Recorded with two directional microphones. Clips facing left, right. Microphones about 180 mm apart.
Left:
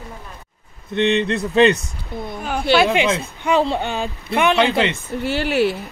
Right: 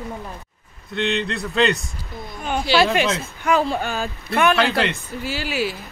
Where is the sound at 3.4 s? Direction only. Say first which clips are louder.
Left 1 dB; 25° left (ahead or behind).